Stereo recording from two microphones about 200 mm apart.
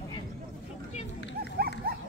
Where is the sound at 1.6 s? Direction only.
50° right (ahead or behind).